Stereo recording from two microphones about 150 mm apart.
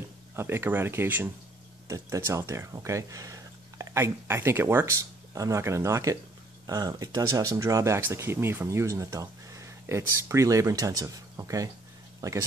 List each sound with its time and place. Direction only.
0.4 s speech: 15° right (ahead or behind)